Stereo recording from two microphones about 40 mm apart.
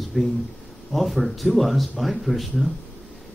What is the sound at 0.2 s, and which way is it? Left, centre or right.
A man's voice, centre.